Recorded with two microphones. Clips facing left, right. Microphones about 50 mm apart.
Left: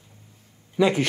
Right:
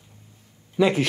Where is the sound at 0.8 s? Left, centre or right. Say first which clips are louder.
Even; centre.